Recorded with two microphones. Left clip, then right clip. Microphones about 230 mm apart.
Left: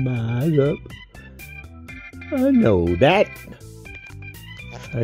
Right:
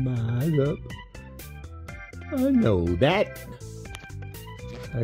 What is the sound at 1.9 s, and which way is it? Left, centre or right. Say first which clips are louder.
Music: left 6 dB; centre.